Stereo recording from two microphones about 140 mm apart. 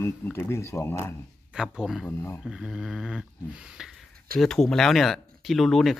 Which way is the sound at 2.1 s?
20° left (ahead or behind).